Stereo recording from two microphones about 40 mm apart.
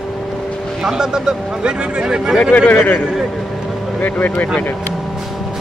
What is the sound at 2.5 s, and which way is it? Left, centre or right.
Speech, left.